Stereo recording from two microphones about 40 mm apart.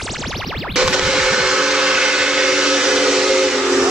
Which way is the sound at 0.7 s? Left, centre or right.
Centre.